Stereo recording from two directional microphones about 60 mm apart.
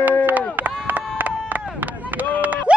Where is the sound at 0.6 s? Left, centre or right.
Right.